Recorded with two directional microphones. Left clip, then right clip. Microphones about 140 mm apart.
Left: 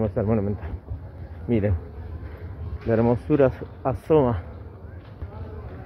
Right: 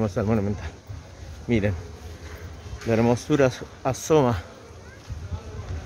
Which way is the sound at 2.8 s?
25° right (ahead or behind).